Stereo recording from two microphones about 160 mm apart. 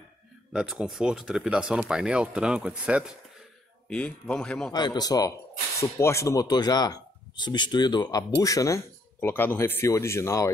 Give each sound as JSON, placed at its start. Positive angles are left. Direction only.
{"t": 0.5, "sound": "speech", "side_deg": -5}
{"t": 3.9, "sound": "speech", "side_deg": 5}
{"t": 4.7, "sound": "speech", "side_deg": 25}